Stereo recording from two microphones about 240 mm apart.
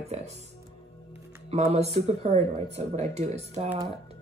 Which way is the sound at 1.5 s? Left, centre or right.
Right.